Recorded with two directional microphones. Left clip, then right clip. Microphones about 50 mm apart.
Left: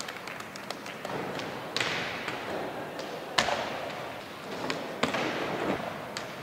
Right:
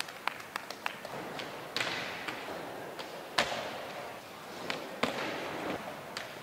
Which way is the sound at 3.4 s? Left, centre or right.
Centre.